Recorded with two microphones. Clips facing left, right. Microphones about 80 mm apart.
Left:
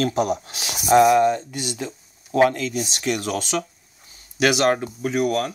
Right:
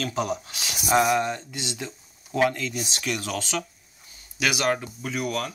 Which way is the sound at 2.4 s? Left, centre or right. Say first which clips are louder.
Left 5 dB; left.